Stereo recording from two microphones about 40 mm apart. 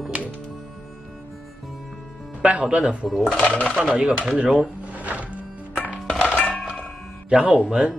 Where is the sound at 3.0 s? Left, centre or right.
Centre.